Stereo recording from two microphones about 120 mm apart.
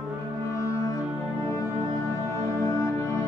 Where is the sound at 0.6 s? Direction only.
25° left (ahead or behind).